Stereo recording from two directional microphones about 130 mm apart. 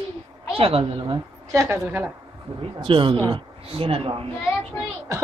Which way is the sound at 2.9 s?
40° right (ahead or behind).